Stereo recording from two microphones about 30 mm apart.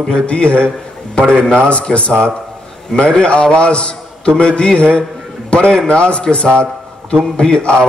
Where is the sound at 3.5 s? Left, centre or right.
Left.